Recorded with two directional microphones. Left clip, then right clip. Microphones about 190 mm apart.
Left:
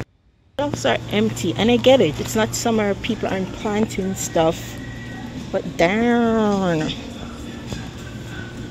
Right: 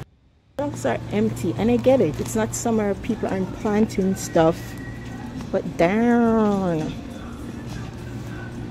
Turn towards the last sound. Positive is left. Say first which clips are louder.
# left 3 dB
turn(degrees=5)  # may be behind; listen again after turning